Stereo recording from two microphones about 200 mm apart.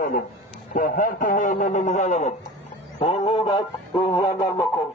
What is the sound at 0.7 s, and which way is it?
A man's voice, 40° left (ahead or behind).